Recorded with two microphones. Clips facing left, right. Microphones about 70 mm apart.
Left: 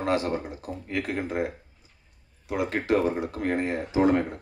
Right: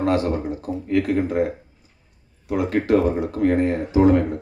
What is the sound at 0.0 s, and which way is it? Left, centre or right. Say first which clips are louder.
Speech: right 5 dB; left.